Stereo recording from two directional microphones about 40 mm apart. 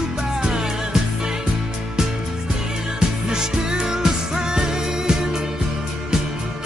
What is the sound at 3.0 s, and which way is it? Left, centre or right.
Music, centre.